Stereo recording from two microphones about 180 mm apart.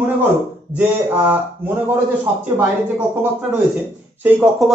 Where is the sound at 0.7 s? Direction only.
5° right (ahead or behind).